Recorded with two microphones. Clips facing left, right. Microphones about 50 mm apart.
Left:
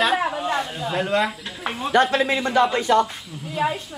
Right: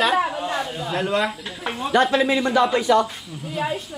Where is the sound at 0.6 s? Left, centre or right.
Centre.